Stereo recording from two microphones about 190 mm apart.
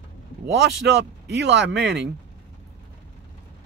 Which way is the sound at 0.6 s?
60° right (ahead or behind).